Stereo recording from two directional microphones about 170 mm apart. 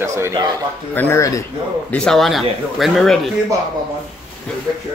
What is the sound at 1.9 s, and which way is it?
Speech, 5° left (ahead or behind).